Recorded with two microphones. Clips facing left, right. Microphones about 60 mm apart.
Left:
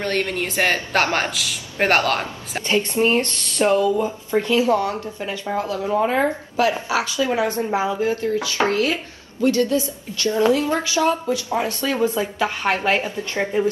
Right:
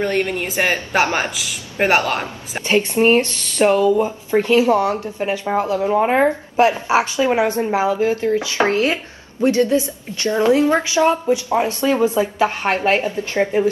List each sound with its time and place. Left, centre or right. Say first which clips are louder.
0.0 s a woman's voice: right 3 dB; centre; by 3.9 s right
4.0 s speech: right 3 dB; right
12.4 s speech: right 3 dB; right